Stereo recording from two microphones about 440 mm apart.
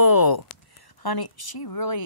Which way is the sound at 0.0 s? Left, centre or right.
Left.